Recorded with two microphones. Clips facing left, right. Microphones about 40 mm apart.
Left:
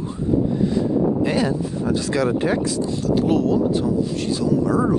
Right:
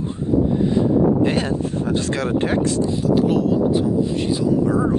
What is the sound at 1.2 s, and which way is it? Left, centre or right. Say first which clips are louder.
Speech: even; right.